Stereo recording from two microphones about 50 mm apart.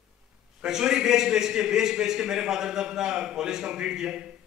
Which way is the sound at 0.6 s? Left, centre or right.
Centre.